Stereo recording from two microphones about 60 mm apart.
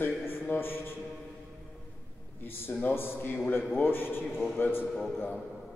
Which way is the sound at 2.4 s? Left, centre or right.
Left.